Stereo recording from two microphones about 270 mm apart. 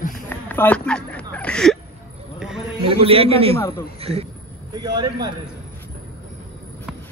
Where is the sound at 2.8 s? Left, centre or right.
Right.